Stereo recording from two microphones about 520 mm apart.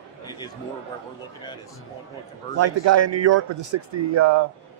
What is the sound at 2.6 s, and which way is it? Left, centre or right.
Speech, right.